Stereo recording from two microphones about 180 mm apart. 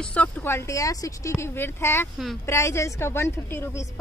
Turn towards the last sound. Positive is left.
turn(degrees=15)  # may be behind; listen again after turning